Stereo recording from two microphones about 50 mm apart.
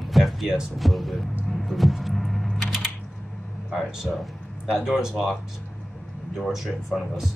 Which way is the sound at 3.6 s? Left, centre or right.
Centre.